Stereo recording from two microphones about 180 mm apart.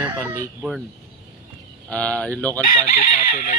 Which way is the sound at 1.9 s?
5° left (ahead or behind).